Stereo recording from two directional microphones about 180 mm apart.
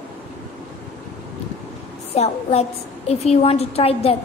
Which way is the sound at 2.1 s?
35° left (ahead or behind).